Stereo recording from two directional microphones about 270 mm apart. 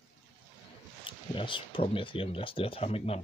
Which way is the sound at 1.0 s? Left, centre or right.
Centre.